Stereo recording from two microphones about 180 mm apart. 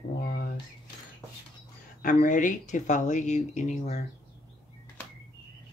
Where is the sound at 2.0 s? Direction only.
45° left (ahead or behind).